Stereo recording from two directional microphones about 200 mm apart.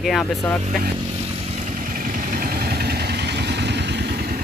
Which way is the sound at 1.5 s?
40° right (ahead or behind).